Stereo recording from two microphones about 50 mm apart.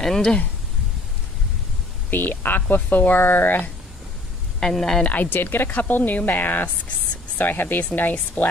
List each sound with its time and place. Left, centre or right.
0.0 s speech: centre
2.0 s speech: left
4.6 s speech: centre
5.0 s speech: left